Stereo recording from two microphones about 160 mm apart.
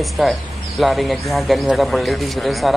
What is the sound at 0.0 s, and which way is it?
Speech, centre (ahead or behind).